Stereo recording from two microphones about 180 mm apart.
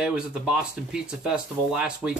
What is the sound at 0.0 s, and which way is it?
Speech, 5° right (ahead or behind).